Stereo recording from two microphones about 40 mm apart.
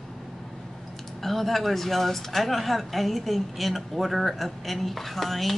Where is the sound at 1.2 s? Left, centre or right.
Centre.